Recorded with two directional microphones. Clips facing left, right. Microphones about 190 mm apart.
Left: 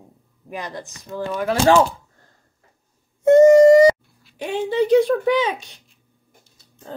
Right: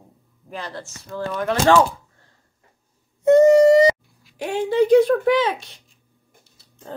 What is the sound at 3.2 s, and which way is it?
Owl, 50° left (ahead or behind).